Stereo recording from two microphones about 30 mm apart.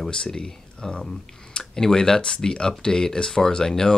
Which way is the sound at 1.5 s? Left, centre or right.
Centre.